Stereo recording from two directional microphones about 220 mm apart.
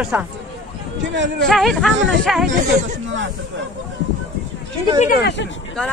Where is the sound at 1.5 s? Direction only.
Centre (ahead or behind).